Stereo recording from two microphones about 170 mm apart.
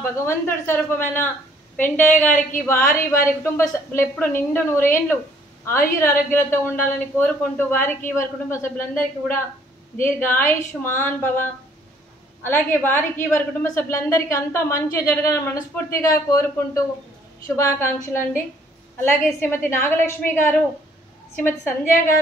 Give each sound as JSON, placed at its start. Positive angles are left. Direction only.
{"t": 0.2, "sound": "a woman's voice", "side_deg": 15}
{"t": 12.4, "sound": "a woman's voice", "side_deg": 10}